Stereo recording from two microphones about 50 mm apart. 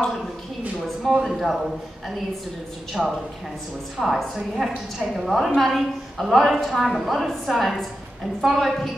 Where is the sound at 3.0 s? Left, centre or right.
Centre.